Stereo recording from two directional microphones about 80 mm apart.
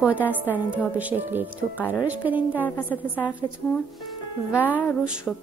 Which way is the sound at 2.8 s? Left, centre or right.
Left.